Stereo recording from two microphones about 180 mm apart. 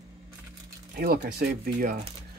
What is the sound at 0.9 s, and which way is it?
Speech, 60° right (ahead or behind).